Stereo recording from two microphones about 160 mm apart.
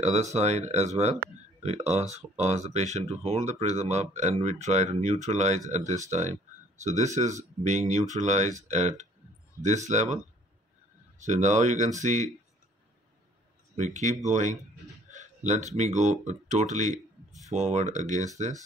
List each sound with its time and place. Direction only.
0.0 s speech: 45° right (ahead or behind)
11.2 s speech: 45° right (ahead or behind)
13.7 s speech: 50° right (ahead or behind)